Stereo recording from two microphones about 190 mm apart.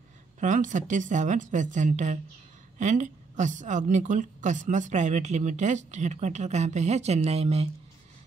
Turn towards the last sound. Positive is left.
turn(degrees=-35)  # may be behind; listen again after turning